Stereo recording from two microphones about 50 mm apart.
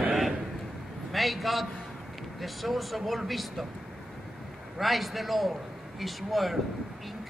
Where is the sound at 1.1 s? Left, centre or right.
Centre.